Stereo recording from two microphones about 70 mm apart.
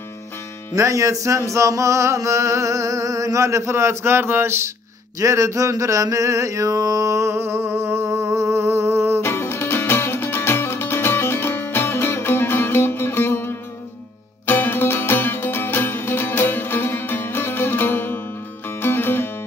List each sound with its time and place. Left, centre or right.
0.7 s music: right
5.2 s a sound: right
9.2 s music: left